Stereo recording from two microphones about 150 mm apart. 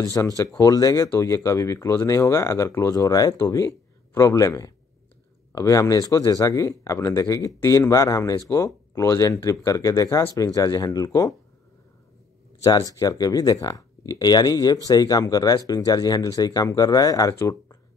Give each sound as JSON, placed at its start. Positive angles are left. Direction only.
{"t": 0.0, "sound": "speech", "side_deg": 20}
{"t": 12.6, "sound": "speech", "side_deg": 25}